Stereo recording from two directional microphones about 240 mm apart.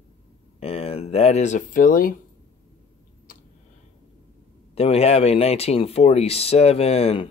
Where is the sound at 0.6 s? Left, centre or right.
Left.